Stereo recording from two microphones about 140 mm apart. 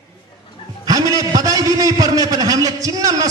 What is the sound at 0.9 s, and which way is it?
A man's voice, 25° right (ahead or behind).